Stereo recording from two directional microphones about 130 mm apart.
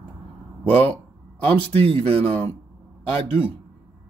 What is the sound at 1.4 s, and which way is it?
Speech, 45° right (ahead or behind).